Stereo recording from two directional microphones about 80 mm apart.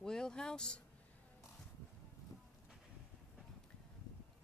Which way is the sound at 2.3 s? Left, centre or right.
Left.